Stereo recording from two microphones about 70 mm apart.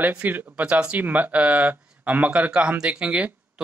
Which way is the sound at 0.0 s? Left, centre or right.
Right.